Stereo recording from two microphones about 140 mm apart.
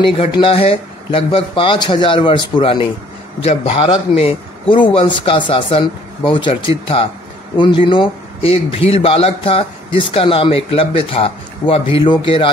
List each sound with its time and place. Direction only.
0.0 s a man's voice: 40° left (ahead or behind)